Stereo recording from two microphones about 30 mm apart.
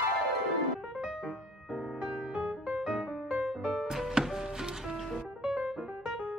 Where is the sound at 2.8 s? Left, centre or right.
Right.